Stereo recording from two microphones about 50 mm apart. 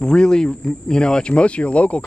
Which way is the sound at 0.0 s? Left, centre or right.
Centre.